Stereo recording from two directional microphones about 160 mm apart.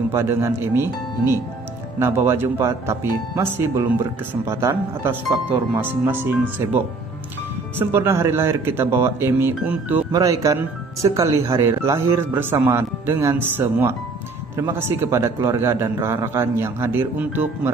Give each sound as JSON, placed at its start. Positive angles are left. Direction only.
{"t": 0.1, "sound": "speech", "side_deg": -15}
{"t": 2.0, "sound": "speech", "side_deg": -15}
{"t": 7.8, "sound": "speech", "side_deg": -15}